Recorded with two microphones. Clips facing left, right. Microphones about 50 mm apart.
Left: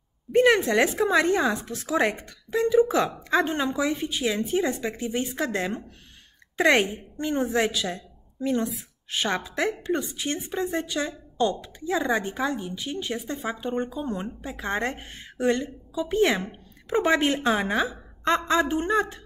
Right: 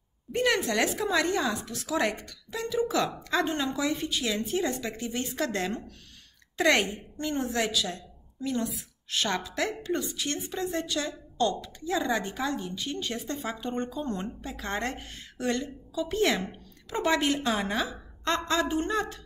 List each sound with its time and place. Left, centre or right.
0.3 s a woman's voice: left